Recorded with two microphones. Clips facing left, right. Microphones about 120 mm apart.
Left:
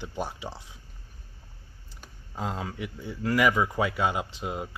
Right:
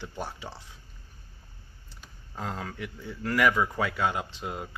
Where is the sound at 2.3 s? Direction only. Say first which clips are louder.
Left 2 dB; 10° left (ahead or behind).